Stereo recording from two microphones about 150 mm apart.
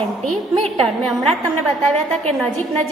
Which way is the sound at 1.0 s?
5° left (ahead or behind).